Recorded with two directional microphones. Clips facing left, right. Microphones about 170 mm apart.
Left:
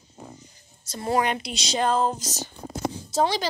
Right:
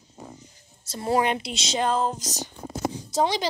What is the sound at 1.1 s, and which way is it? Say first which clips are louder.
Speech: right 1 dB; 25° right (ahead or behind).